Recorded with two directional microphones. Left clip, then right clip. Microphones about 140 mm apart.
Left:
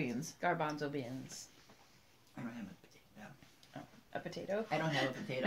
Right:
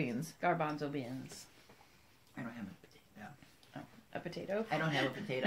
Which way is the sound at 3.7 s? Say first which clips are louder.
Right 1 dB; 10° left (ahead or behind).